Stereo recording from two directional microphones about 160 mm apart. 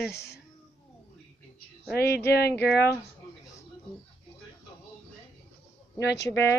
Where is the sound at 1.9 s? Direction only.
80° left.